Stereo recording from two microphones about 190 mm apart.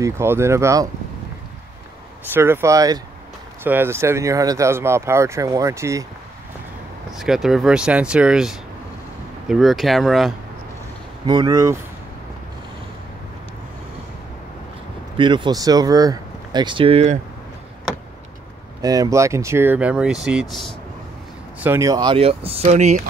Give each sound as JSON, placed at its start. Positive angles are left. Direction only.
{"t": 0.0, "sound": "speech", "side_deg": -15}
{"t": 2.3, "sound": "speech", "side_deg": -10}
{"t": 7.2, "sound": "speech", "side_deg": 0}
{"t": 11.2, "sound": "speech", "side_deg": -20}
{"t": 15.1, "sound": "speech", "side_deg": -25}
{"t": 18.8, "sound": "speech", "side_deg": -20}
{"t": 21.5, "sound": "speech", "side_deg": -15}